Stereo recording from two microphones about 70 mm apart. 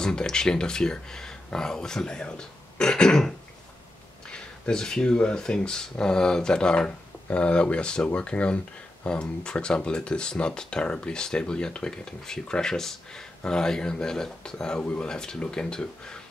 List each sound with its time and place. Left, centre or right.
0.0 s speech: centre